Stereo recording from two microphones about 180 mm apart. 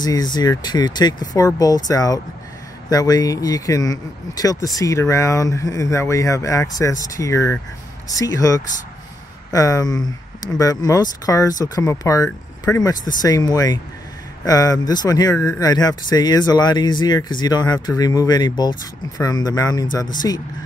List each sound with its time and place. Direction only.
0.0 s speech: 20° left (ahead or behind)